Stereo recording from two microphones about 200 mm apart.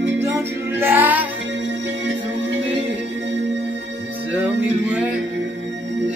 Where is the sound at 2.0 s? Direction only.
65° right (ahead or behind).